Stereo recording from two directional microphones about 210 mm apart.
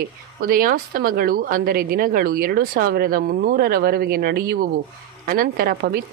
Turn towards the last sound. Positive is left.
turn(degrees=-45)  # may be behind; listen again after turning